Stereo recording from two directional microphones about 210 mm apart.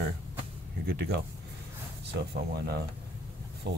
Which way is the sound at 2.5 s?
50° right (ahead or behind).